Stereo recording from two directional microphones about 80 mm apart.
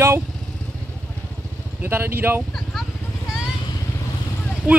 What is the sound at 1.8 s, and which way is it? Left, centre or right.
Speech, right.